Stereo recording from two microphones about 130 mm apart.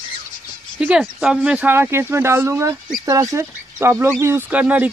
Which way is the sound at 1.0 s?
5° right (ahead or behind).